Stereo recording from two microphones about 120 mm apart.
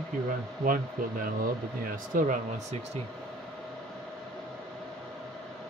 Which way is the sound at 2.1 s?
90° right.